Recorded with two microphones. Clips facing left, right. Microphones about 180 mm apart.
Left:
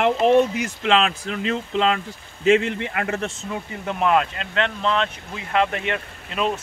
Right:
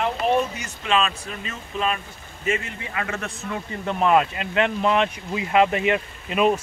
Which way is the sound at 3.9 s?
Centre (ahead or behind).